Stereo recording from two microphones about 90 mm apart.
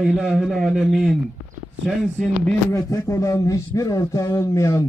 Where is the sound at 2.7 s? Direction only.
35° left (ahead or behind).